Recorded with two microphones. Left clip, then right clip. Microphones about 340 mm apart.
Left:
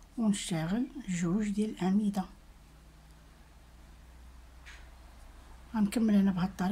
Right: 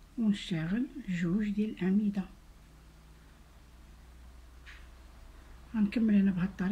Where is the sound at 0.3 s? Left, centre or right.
Centre.